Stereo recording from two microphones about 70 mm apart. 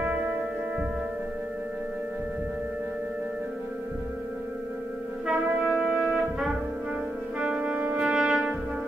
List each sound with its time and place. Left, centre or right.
5.2 s brass instrument: centre
7.3 s music: centre
8.0 s brass instrument: centre